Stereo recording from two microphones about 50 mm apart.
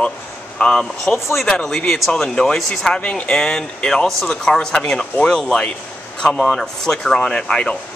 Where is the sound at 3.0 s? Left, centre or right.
Left.